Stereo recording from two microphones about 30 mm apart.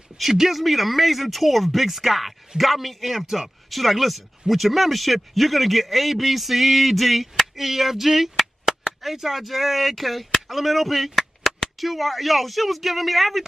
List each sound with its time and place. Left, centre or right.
0.2 s speech: centre
8.7 s chop: centre
9.0 s speech: centre